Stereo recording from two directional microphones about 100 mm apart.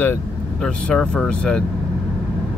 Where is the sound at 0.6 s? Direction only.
10° left (ahead or behind).